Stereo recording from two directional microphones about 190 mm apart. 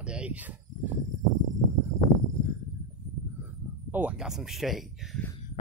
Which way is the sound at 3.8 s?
10° right (ahead or behind).